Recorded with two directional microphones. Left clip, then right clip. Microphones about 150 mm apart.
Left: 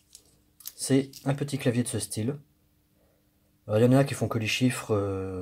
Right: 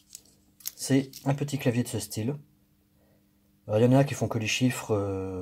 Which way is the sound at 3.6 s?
5° left (ahead or behind).